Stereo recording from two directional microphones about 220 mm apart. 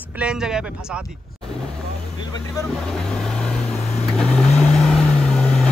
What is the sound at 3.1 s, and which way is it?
Vehicle, centre (ahead or behind).